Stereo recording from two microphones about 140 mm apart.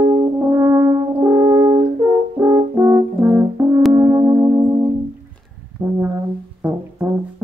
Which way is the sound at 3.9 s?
20° right (ahead or behind).